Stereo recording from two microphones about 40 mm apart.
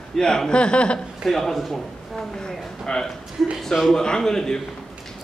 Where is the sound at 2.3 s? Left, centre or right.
Centre.